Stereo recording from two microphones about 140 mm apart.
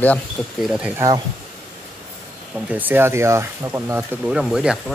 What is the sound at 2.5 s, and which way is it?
Speech, 10° right (ahead or behind).